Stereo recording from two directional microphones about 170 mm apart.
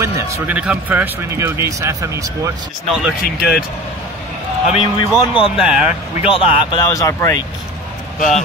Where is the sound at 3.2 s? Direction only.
65° left (ahead or behind).